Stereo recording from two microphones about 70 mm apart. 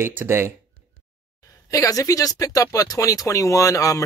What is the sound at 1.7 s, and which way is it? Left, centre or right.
Speech, left.